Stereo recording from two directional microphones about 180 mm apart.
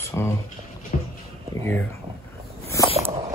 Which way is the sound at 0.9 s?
40° left (ahead or behind).